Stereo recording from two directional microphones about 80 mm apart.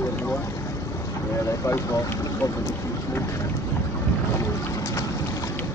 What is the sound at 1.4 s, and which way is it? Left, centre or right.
Speech, left.